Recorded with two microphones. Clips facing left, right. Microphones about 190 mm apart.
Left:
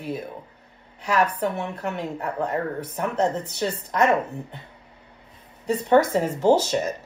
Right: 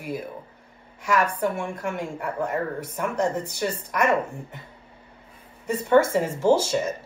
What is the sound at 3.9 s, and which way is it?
Speech, 30° left (ahead or behind).